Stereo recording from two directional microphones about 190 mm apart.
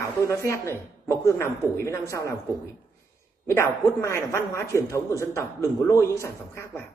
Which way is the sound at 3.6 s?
15° left (ahead or behind).